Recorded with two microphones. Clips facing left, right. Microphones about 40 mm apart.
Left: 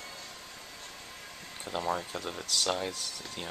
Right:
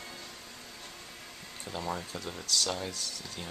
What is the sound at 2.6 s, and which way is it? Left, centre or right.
Speech, left.